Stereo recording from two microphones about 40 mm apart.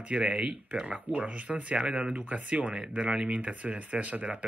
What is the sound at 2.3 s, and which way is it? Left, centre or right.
Speech, right.